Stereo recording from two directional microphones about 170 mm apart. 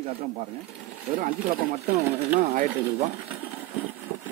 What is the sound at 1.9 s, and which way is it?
Speech, 15° right (ahead or behind).